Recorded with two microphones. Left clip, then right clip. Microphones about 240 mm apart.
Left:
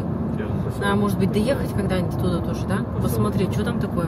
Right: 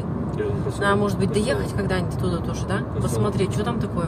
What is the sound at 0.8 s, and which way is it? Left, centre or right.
Speech, centre.